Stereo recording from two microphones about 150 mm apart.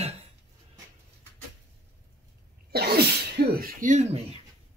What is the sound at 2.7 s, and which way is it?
Speech, 90° right.